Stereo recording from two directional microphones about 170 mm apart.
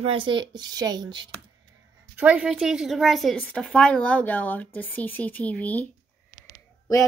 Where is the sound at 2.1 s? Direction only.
10° right (ahead or behind); by 5.9 s 10° left (ahead or behind).